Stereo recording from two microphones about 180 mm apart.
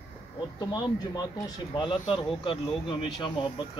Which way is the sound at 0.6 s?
20° left (ahead or behind).